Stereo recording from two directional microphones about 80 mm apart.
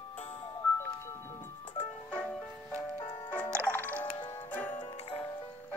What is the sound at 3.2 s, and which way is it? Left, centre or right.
Music, left.